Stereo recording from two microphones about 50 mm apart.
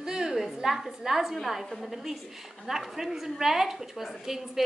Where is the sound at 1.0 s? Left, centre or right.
Centre.